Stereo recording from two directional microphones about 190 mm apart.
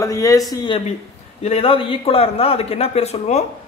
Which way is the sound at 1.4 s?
30° left (ahead or behind).